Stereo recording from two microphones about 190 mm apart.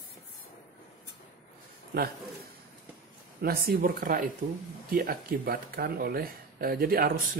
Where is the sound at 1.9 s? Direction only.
55° right (ahead or behind).